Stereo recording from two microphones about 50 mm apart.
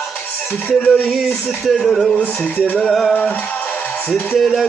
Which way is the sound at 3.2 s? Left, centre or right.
Left.